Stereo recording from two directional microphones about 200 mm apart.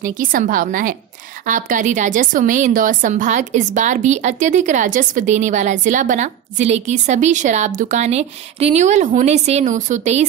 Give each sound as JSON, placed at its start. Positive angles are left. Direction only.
{"t": 0.0, "sound": "a woman's voice", "side_deg": -40}